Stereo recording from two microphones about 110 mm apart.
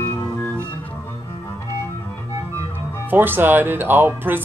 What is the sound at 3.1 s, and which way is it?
Speech, 20° right (ahead or behind).